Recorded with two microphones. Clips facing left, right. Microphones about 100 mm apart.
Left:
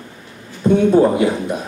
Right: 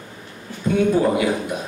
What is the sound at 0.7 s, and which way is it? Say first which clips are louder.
Speech: left 5 dB; 30° left (ahead or behind).